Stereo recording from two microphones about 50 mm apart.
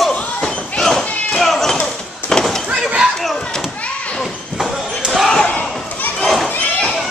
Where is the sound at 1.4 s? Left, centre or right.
Centre.